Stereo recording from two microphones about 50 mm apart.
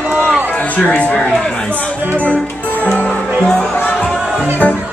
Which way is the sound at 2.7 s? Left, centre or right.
Left.